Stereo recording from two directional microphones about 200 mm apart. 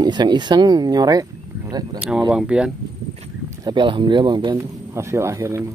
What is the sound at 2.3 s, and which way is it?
Speech, 5° right (ahead or behind).